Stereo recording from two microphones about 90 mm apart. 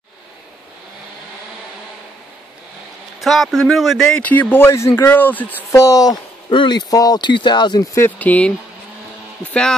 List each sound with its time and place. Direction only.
3.2 s a man's voice: centre (ahead or behind)
4.0 s speech: 10° left (ahead or behind)
5.7 s speech: 40° left (ahead or behind)
6.5 s speech: 60° left (ahead or behind)
7.9 s speech: 30° left (ahead or behind)
8.3 s speech: 15° left (ahead or behind)